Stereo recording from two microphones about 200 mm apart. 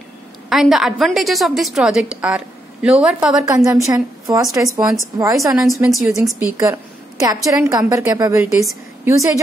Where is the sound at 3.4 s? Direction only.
15° right (ahead or behind).